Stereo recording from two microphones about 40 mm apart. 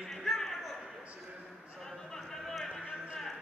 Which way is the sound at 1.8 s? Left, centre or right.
Centre.